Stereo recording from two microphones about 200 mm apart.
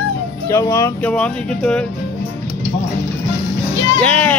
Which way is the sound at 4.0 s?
5° left (ahead or behind).